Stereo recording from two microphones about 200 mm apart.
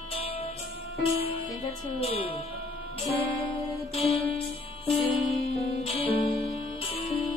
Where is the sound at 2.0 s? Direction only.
30° left (ahead or behind).